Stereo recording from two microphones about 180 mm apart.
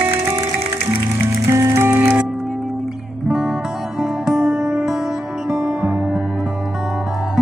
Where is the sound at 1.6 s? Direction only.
15° right (ahead or behind).